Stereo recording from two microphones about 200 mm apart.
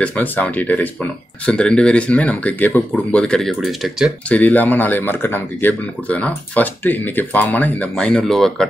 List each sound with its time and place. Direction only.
0.0 s speech: 5° left (ahead or behind)